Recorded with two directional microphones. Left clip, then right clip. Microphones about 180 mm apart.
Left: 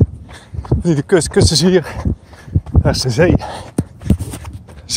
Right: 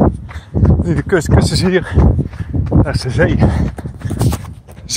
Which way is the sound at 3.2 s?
25° left (ahead or behind).